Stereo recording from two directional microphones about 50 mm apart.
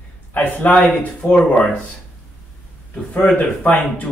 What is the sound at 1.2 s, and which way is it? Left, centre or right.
Speech, left.